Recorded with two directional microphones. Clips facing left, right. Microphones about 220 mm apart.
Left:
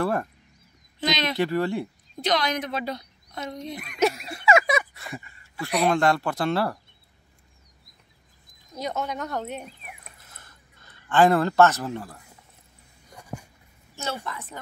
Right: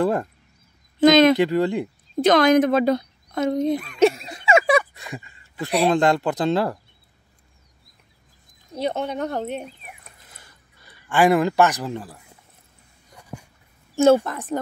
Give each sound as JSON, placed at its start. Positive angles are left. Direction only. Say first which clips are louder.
{"t": 0.0, "sound": "speech", "louder": "right 4 dB", "side_deg": -20}
{"t": 1.0, "sound": "speech", "louder": "right 14 dB", "side_deg": -50}
{"t": 1.4, "sound": "speech", "louder": "right 4 dB", "side_deg": -20}
{"t": 2.1, "sound": "speech", "louder": "right 11 dB", "side_deg": -50}
{"t": 4.0, "sound": "a sound", "louder": "right 4 dB", "side_deg": -30}
{"t": 4.9, "sound": "a sound", "louder": "right 2 dB", "side_deg": -15}
{"t": 5.7, "sound": "speech", "louder": "right 3 dB", "side_deg": -30}
{"t": 5.9, "sound": "a woman's voice", "louder": "right 4 dB", "side_deg": -20}
{"t": 8.7, "sound": "a woman's voice", "louder": "right 5 dB", "side_deg": -30}
{"t": 10.2, "sound": "a sound", "louder": "right 1 dB", "side_deg": -15}
{"t": 13.9, "sound": "speech", "louder": "right 17 dB", "side_deg": -50}